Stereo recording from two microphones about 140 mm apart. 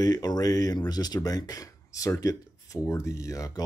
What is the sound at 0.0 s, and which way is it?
Speech, 30° left (ahead or behind).